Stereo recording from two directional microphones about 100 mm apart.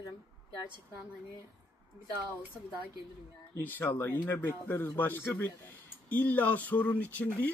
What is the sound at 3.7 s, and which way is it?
Speech, 20° left (ahead or behind).